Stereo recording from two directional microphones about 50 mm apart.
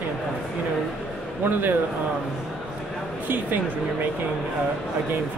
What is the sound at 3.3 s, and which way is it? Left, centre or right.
Speech, right.